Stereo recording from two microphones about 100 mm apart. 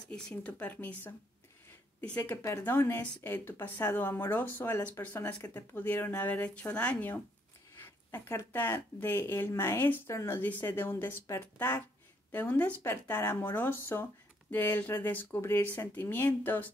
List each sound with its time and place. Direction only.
0.1 s speech: 10° left (ahead or behind)
2.2 s speech: 25° left (ahead or behind)
5.4 s speech: 30° left (ahead or behind)
5.8 s speech: 20° left (ahead or behind)